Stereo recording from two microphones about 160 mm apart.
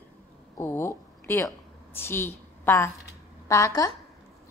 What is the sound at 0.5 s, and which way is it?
A woman's voice, 15° left (ahead or behind).